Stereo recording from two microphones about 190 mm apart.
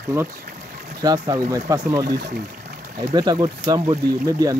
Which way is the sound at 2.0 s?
55° right (ahead or behind).